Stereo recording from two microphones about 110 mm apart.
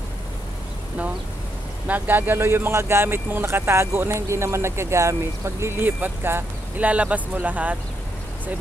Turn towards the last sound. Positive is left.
turn(degrees=-15)  # may be behind; listen again after turning